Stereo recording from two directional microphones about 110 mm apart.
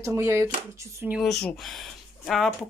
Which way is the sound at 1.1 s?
5° left (ahead or behind).